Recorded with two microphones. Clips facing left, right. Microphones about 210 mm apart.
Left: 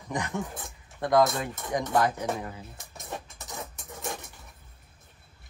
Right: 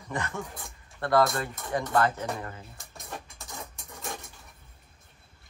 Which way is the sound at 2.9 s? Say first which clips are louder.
Left 3 dB; 20° left (ahead or behind).